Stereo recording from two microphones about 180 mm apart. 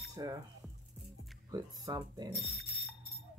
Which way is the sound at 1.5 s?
20° right (ahead or behind).